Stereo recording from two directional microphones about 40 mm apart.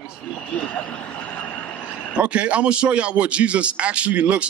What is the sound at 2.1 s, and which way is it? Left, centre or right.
A man's voice, right.